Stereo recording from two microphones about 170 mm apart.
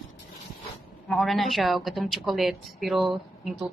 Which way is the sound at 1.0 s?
Centre (ahead or behind).